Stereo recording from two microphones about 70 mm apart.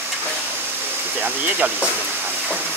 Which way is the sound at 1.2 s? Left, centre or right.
Right.